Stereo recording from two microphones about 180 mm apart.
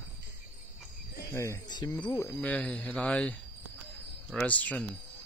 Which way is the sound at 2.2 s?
5° left (ahead or behind).